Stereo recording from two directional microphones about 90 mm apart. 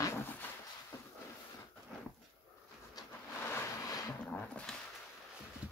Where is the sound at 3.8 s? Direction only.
40° left (ahead or behind).